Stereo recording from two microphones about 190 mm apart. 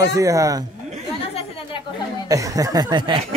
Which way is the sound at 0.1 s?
15° right (ahead or behind).